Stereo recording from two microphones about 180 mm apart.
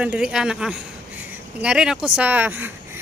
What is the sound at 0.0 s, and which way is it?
Speech, 5° right (ahead or behind).